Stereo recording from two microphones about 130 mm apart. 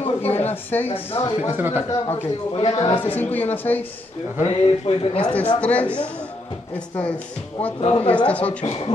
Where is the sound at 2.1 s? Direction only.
45° left (ahead or behind).